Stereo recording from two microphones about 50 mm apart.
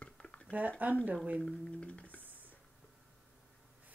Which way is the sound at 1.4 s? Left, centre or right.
Centre.